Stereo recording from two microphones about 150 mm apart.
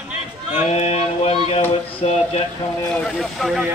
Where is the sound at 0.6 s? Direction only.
45° left (ahead or behind).